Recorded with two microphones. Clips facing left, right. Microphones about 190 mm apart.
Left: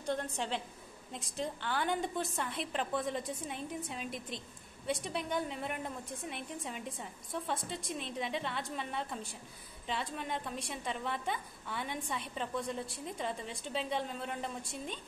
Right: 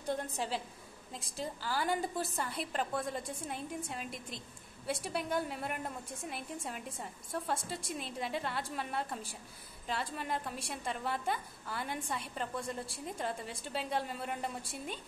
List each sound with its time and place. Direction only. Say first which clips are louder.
0.0 s a woman's voice: even; 10° right (ahead or behind)